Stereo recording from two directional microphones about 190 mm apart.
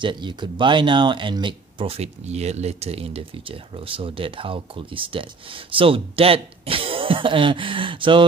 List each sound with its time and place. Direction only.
0.0 s speech: 25° right (ahead or behind)